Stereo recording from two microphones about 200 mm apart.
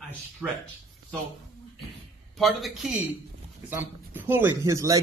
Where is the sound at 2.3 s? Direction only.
Centre (ahead or behind); by 5.0 s 15° right (ahead or behind).